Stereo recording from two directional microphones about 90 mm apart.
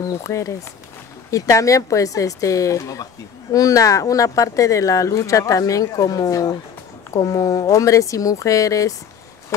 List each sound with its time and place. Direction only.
0.2 s speech: 35° left (ahead or behind)